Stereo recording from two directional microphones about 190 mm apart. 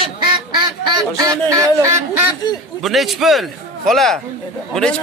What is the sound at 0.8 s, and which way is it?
Speech, 20° right (ahead or behind).